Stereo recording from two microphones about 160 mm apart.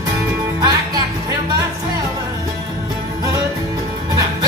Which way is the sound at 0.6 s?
25° right (ahead or behind).